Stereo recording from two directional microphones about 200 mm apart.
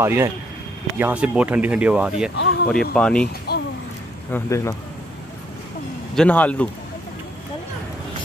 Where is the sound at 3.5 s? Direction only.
55° left (ahead or behind).